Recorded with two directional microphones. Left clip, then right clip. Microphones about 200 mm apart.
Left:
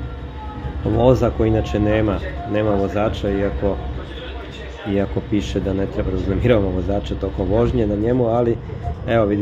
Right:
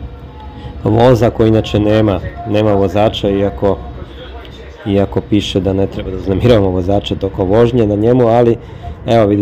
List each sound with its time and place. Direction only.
0.8 s a man's voice: 35° right (ahead or behind)
4.8 s a man's voice: 35° right (ahead or behind)